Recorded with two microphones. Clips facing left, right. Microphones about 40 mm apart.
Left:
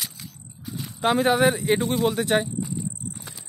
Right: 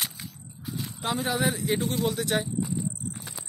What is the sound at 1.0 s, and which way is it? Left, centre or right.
Speech, left.